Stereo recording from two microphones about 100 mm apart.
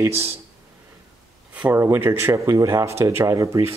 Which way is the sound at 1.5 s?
15° right (ahead or behind).